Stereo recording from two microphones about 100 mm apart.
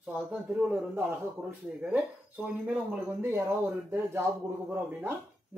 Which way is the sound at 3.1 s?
25° right (ahead or behind).